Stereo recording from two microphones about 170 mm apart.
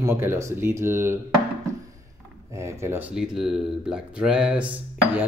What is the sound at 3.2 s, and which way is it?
Speech, 5° right (ahead or behind).